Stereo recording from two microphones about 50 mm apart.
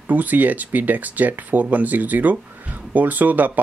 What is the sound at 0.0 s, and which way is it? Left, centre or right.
Speech, right.